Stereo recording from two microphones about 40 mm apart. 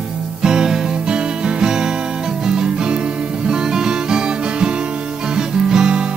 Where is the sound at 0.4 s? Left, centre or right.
Centre.